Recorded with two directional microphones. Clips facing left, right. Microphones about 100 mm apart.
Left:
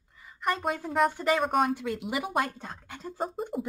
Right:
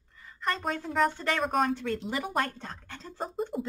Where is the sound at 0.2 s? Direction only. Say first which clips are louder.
Left 2 dB; 10° left (ahead or behind).